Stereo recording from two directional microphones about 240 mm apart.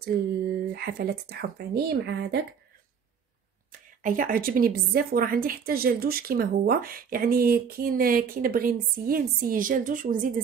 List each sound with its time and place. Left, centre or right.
0.0 s a woman's voice: right
4.0 s a woman's voice: right